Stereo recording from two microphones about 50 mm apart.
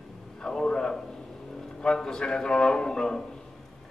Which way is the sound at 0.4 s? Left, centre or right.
Centre.